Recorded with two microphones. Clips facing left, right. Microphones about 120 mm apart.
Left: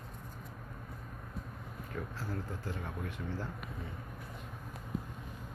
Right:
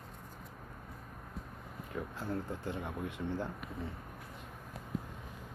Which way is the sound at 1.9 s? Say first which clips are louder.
Right 3 dB; 25° right (ahead or behind).